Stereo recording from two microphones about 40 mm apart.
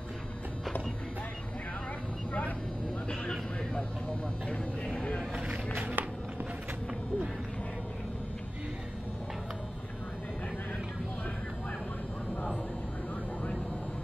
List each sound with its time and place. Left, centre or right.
3.7 s vehicle: left
5.8 s walk: right